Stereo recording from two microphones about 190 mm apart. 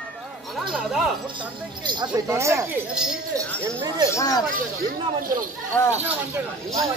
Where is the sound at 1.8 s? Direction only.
20° right (ahead or behind).